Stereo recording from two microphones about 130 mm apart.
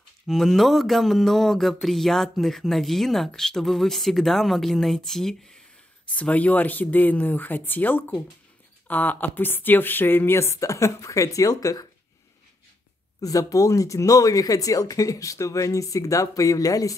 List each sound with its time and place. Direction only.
0.3 s speech: centre (ahead or behind); by 11.9 s 30° left (ahead or behind)
13.2 s speech: 25° left (ahead or behind)